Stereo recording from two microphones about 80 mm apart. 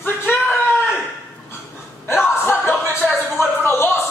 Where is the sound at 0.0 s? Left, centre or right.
Left.